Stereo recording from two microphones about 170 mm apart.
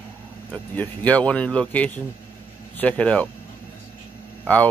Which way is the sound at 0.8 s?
10° left (ahead or behind).